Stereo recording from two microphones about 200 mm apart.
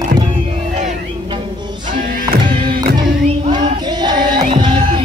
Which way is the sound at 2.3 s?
50° right (ahead or behind).